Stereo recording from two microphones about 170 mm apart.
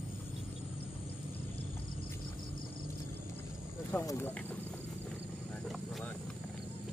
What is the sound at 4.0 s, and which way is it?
Speech, 20° left (ahead or behind).